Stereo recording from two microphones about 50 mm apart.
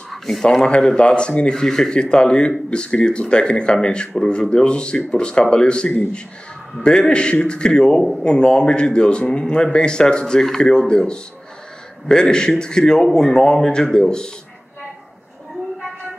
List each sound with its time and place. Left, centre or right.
0.1 s speech: centre
0.7 s a man's voice: left